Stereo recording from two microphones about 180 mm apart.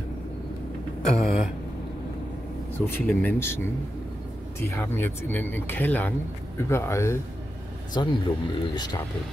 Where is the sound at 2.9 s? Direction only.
10° left (ahead or behind).